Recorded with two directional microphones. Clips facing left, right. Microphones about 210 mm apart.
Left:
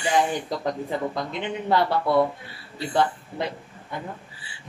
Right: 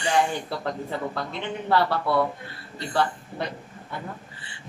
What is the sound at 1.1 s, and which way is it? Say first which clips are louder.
A woman's voice: left 2 dB; 15° left (ahead or behind).